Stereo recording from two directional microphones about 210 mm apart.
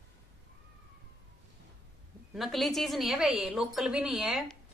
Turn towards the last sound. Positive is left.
turn(degrees=0)  # may be behind; listen again after turning